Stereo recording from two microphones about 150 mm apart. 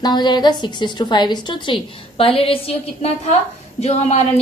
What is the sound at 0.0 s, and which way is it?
A woman's voice, 30° left (ahead or behind).